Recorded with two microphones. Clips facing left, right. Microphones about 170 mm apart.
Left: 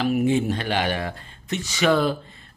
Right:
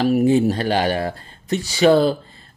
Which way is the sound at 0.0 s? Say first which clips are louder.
Right 5 dB; 40° right (ahead or behind).